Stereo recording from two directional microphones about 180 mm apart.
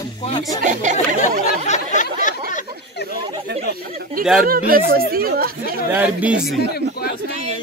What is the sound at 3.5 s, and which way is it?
Speech, 60° right (ahead or behind).